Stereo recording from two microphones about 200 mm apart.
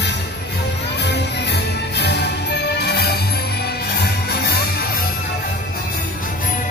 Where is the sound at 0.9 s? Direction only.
55° left (ahead or behind).